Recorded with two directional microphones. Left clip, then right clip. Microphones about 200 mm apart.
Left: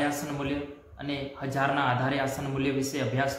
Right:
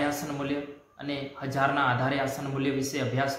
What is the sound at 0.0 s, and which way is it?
A man's voice, 5° right (ahead or behind).